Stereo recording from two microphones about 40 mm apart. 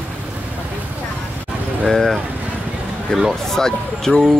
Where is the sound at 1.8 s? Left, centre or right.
Centre.